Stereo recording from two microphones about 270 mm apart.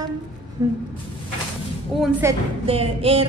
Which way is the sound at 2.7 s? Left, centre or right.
Right.